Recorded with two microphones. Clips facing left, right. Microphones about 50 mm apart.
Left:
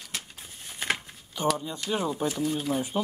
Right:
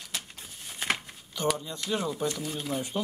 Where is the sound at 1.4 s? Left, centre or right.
Centre.